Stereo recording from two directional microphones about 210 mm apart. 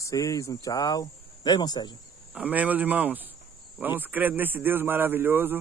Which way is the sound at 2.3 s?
5° right (ahead or behind).